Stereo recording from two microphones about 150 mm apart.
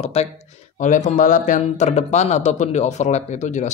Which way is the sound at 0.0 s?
45° left (ahead or behind).